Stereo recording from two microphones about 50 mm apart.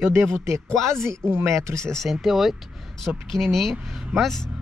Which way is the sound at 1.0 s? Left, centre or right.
Right.